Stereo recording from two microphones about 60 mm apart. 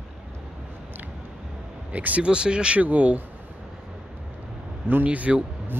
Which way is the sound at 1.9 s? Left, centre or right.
Right.